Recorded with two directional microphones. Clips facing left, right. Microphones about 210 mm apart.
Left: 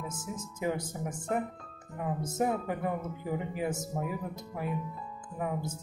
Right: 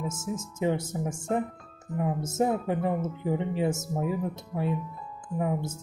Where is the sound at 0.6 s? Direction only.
25° right (ahead or behind).